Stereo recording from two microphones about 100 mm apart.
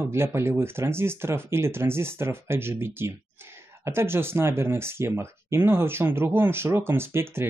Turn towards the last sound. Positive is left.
turn(degrees=-25)  # may be behind; listen again after turning